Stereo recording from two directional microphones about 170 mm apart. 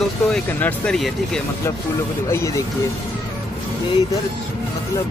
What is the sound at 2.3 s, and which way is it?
Speech, 15° left (ahead or behind).